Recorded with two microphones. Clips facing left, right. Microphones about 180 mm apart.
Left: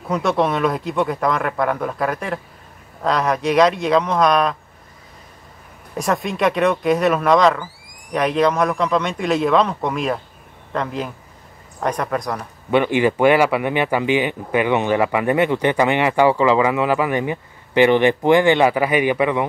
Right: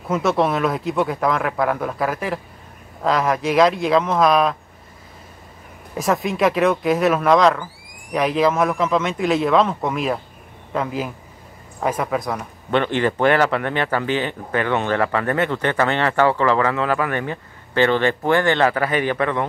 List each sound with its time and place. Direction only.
0.1 s speech: centre (ahead or behind)
5.9 s speech: centre (ahead or behind)
12.7 s speech: 10° left (ahead or behind)